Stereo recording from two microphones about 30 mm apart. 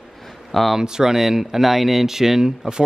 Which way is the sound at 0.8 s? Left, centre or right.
Centre.